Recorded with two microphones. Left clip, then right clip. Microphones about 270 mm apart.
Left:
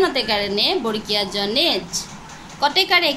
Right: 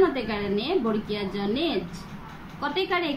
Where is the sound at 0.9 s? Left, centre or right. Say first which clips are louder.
Left 7 dB; left.